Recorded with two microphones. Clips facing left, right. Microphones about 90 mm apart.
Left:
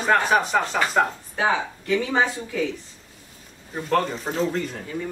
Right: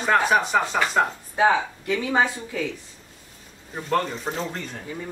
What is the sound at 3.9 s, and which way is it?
Speech, centre (ahead or behind).